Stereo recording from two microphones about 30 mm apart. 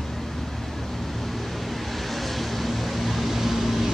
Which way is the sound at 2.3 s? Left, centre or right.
Centre.